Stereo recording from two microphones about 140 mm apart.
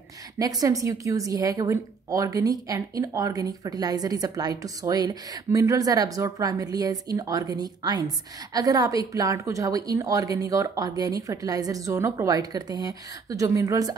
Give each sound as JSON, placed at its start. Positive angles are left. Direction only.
{"t": 0.4, "sound": "a woman's voice", "side_deg": -25}